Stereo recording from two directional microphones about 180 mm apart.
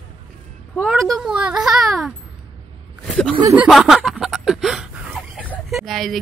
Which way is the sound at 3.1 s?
Centre (ahead or behind).